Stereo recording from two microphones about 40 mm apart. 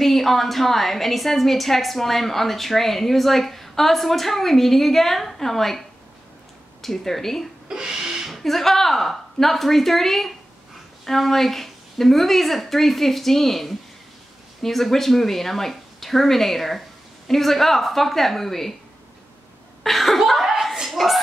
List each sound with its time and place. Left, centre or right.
0.0 s a woman's voice: centre
7.6 s speech: centre
8.3 s a woman's voice: centre
19.8 s cough: centre
20.9 s a sound: centre